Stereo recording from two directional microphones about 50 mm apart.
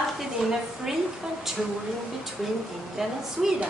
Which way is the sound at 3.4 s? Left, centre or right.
Centre.